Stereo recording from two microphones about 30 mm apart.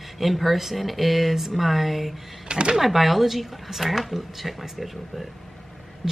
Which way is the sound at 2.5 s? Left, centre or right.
Right.